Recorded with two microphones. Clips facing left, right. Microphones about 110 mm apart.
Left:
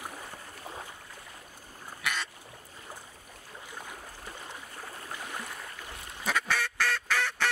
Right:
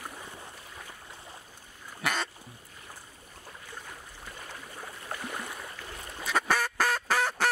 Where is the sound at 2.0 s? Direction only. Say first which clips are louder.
Right 4 dB; 40° right (ahead or behind).